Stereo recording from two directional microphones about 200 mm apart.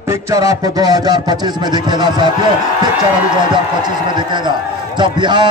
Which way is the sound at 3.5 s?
20° right (ahead or behind).